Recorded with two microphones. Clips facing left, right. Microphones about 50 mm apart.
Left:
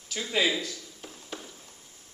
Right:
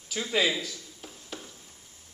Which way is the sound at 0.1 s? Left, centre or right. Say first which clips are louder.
Even; centre.